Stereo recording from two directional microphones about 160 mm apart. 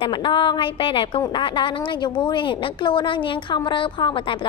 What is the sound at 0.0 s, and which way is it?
A woman's voice, 30° left (ahead or behind).